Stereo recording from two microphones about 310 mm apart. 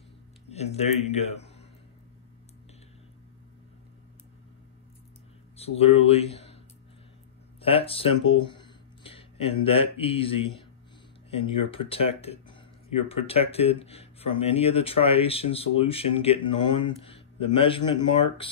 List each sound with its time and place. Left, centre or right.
0.5 s speech: left
5.6 s speech: centre
7.6 s speech: centre